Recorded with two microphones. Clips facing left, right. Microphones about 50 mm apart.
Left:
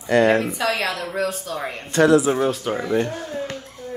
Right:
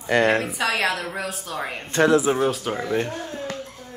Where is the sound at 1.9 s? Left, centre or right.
Right.